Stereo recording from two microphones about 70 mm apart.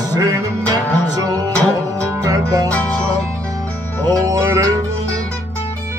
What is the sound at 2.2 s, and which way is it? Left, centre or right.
Music, right.